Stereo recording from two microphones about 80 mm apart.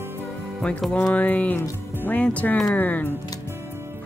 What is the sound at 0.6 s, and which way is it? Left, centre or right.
Speech, centre.